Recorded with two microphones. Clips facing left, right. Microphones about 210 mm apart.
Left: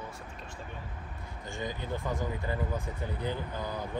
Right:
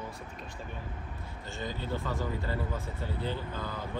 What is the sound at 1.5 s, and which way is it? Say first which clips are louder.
Speech: even; 15° left (ahead or behind).